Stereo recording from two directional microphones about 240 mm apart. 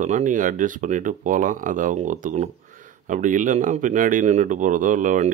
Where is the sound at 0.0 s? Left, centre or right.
Right.